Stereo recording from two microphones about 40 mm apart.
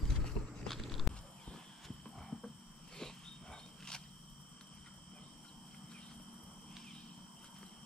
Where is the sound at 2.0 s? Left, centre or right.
Centre.